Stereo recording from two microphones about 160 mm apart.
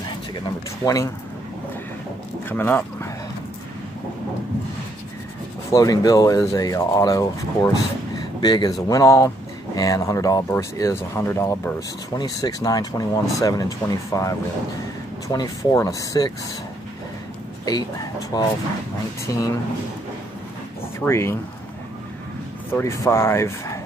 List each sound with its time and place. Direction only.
0.8 s speech: 20° left (ahead or behind)
2.4 s speech: 10° left (ahead or behind)
5.7 s speech: 25° left (ahead or behind)
17.6 s speech: 25° left (ahead or behind)
21.0 s speech: 15° left (ahead or behind)
22.7 s speech: 15° left (ahead or behind)